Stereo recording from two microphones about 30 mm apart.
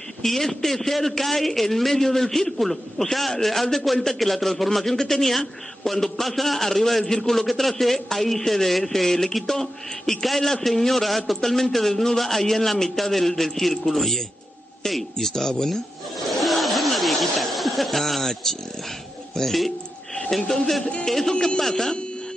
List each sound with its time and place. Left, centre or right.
0.2 s a man's voice: centre
6.2 s a man's voice: centre
16.2 s a sound: centre
19.3 s speech: centre
21.5 s speech: centre